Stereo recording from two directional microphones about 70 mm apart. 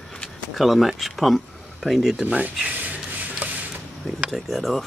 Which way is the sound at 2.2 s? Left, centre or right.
Centre.